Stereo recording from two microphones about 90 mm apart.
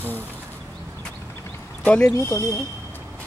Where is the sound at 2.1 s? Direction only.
30° left (ahead or behind).